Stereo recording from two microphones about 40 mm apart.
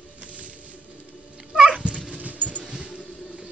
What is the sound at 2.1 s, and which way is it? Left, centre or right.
Dog, right.